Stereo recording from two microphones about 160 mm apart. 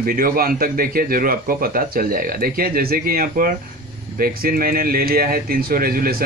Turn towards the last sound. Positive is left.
turn(degrees=-65)  # may be behind; listen again after turning